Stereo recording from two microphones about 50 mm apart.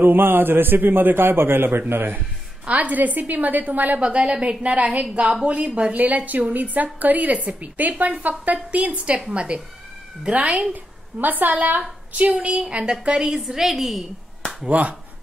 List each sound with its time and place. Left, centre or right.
0.0 s a man's voice: right
2.6 s a woman's voice: right
4.0 s a woman's voice: right
12.4 s a woman's voice: centre
14.7 s a woman's voice: right